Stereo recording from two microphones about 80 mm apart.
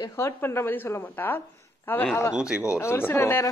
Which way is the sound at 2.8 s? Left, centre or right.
Left.